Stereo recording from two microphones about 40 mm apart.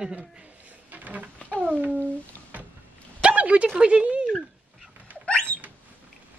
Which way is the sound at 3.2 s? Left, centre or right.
Right.